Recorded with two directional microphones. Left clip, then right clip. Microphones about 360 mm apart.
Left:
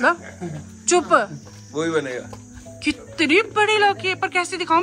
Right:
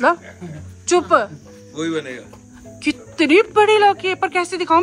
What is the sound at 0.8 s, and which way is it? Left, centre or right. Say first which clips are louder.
Speech: right 2 dB; centre.